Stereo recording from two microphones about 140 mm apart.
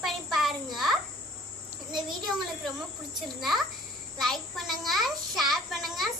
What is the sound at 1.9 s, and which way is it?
Speech, 30° right (ahead or behind).